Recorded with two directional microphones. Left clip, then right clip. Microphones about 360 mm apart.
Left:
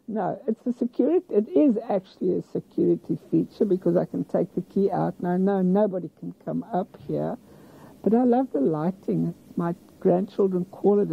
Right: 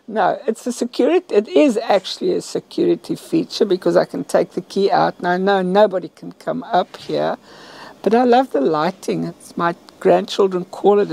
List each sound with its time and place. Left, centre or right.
0.1 s speech: centre